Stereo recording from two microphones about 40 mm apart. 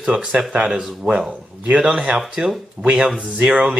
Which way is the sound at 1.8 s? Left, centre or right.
Right.